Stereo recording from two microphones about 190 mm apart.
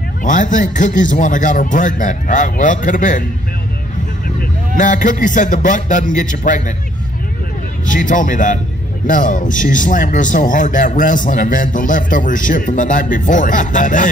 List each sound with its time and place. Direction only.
0.2 s speech: 40° left (ahead or behind)
4.7 s a man's voice: 40° left (ahead or behind)
7.8 s speech: 45° left (ahead or behind)